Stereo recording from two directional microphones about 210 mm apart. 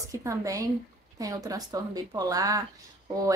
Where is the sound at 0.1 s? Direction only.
15° right (ahead or behind).